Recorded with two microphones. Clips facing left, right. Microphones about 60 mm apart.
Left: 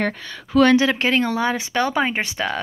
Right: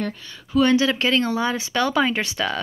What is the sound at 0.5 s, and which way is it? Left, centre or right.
Speech, left.